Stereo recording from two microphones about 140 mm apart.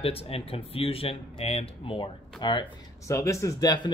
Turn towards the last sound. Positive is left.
turn(degrees=25)  # may be behind; listen again after turning